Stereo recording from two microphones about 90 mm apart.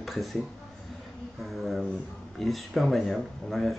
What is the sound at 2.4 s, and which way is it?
Speech, centre (ahead or behind).